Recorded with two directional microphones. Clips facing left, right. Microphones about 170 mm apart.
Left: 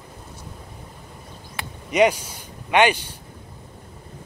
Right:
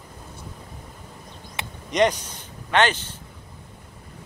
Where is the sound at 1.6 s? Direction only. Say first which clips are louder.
Even; 20° right (ahead or behind).